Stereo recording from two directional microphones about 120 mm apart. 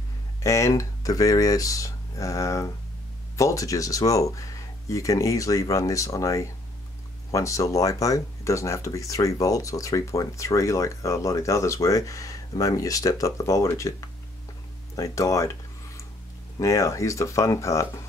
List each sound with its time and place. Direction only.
0.4 s speech: 25° left (ahead or behind)
15.0 s speech: 25° left (ahead or behind)
16.5 s speech: 25° left (ahead or behind)